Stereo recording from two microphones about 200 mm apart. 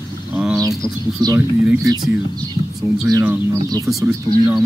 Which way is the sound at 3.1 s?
15° right (ahead or behind).